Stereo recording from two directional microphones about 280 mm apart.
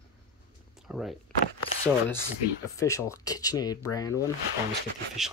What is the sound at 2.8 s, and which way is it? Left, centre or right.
Speech, centre.